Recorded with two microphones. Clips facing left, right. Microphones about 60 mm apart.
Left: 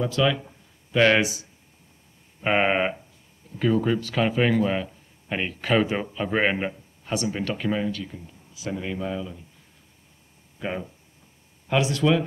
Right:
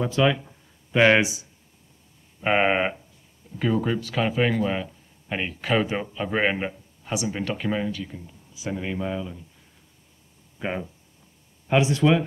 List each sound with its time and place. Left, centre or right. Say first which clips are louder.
0.0 s speech: right 1 dB; centre
2.4 s a man's voice: even; centre
10.6 s speech: right 1 dB; centre